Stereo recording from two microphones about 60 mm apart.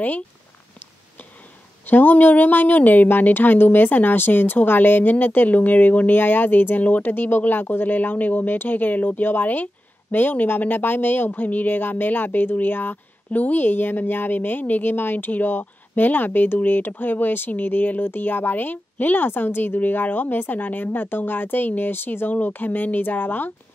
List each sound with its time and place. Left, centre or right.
1.9 s speech: left